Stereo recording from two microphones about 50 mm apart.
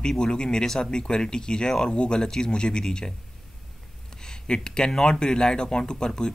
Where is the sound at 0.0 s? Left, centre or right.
Centre.